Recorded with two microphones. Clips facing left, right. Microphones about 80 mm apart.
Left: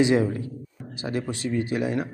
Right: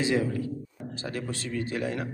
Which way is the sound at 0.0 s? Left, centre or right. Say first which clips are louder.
Left 5 dB; left.